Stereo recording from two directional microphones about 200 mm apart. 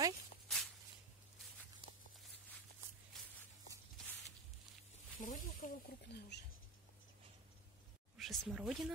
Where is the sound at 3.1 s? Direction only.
Centre (ahead or behind).